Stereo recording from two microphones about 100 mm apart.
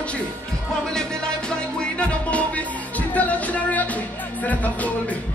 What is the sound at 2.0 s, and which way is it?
Music, 15° left (ahead or behind).